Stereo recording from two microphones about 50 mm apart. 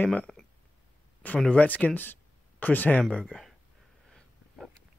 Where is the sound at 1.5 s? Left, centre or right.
Left.